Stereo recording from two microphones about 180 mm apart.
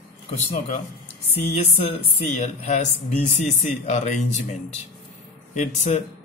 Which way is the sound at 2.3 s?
40° left (ahead or behind).